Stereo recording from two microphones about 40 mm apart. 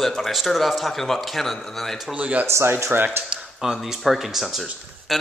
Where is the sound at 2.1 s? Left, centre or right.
Right.